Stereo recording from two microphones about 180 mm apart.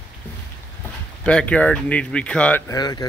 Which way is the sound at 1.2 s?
5° left (ahead or behind).